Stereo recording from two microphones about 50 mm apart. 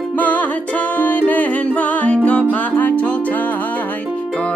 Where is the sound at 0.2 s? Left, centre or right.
Left.